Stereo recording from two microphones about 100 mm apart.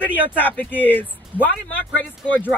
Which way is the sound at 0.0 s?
20° left (ahead or behind).